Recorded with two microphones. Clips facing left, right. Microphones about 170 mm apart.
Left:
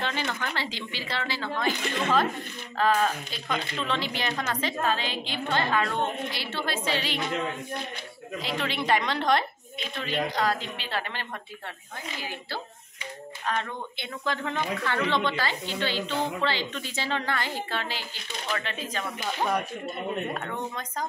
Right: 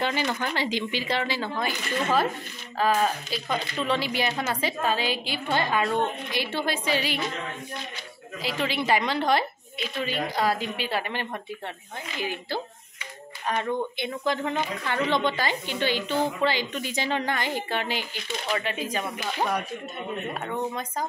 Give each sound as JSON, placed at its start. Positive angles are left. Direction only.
{"t": 0.0, "sound": "speech", "side_deg": -10}
{"t": 8.4, "sound": "a woman's voice", "side_deg": -5}
{"t": 20.3, "sound": "speech", "side_deg": -10}